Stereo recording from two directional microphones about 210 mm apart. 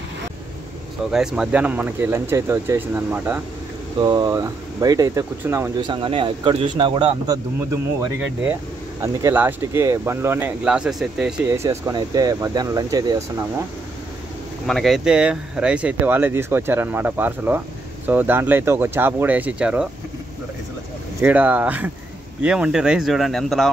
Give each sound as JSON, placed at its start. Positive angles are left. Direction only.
{"t": 1.1, "sound": "speech", "side_deg": -5}
{"t": 9.0, "sound": "speech", "side_deg": -10}
{"t": 14.7, "sound": "speech", "side_deg": 0}
{"t": 21.2, "sound": "speech", "side_deg": -10}